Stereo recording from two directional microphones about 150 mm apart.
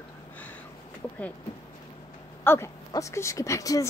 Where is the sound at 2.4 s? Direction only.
15° left (ahead or behind).